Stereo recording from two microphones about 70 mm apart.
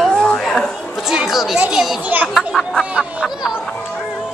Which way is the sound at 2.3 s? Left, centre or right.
Centre.